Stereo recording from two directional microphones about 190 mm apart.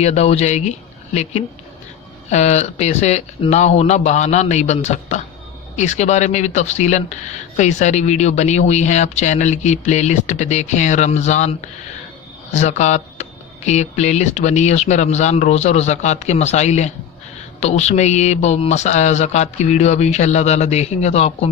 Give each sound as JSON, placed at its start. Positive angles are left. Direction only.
{"t": 0.0, "sound": "speech", "side_deg": 35}
{"t": 12.5, "sound": "speech", "side_deg": 35}